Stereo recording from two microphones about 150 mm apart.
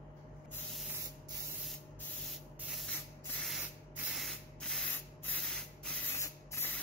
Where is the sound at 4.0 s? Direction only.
Centre (ahead or behind); by 6.8 s 15° left (ahead or behind).